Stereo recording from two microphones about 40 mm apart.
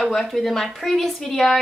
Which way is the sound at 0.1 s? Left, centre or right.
Centre.